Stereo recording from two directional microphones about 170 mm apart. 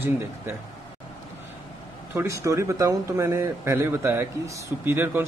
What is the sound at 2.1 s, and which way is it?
Speech, 15° right (ahead or behind).